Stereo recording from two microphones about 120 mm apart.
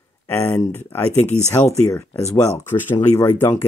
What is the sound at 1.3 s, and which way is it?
Speech, 20° right (ahead or behind).